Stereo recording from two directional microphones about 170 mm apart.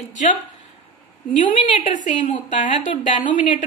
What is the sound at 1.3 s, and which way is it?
A woman's voice, 50° left (ahead or behind).